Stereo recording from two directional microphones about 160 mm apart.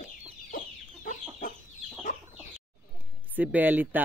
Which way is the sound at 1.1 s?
50° left (ahead or behind).